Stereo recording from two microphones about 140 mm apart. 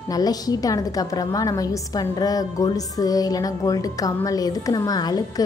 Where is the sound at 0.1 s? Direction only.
25° left (ahead or behind).